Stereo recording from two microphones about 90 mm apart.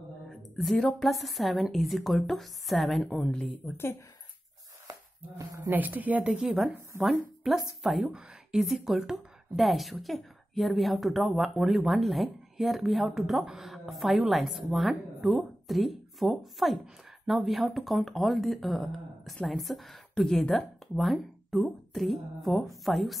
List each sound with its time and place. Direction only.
0.3 s a woman's voice: centre (ahead or behind)
3.6 s a woman's voice: 25° left (ahead or behind)
5.6 s a woman's voice: 20° right (ahead or behind); by 23.1 s centre (ahead or behind)